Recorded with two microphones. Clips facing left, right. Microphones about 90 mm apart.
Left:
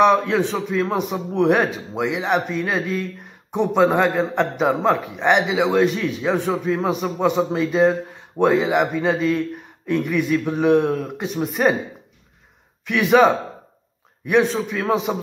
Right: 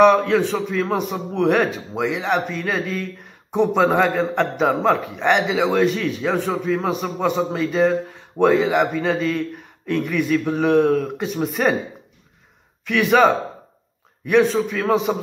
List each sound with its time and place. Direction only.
0.0 s a man's voice: 20° left (ahead or behind)
12.8 s a man's voice: 15° left (ahead or behind)
15.1 s a man's voice: 5° left (ahead or behind)